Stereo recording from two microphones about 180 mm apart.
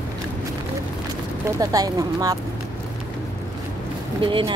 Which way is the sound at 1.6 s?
20° right (ahead or behind).